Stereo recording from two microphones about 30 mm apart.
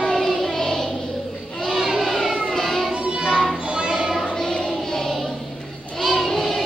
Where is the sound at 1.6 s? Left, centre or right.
Centre.